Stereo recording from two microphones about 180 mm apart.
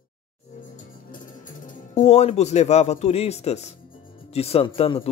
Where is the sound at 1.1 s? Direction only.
45° left (ahead or behind).